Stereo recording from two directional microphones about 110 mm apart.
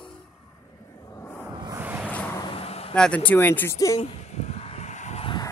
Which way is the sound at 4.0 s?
75° left (ahead or behind).